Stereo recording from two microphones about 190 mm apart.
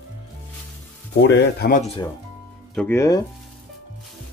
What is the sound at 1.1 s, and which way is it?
Speech, 70° left (ahead or behind).